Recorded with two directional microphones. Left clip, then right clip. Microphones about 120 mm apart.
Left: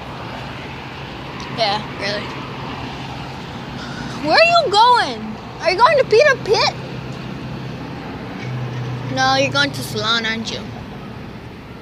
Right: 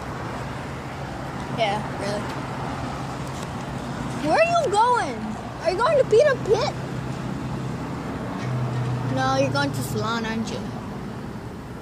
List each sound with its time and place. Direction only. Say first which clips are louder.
1.7 s speech: left 5 dB; 15° right (ahead or behind)
4.3 s speech: left 7 dB; 20° left (ahead or behind)
9.2 s speech: left 7 dB; 10° left (ahead or behind); by 10.6 s 10° right (ahead or behind)